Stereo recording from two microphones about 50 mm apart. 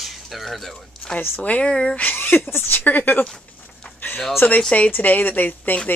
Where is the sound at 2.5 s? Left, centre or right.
Left.